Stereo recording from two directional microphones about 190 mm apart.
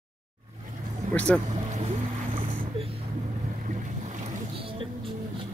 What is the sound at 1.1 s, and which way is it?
Speech, 5° left (ahead or behind).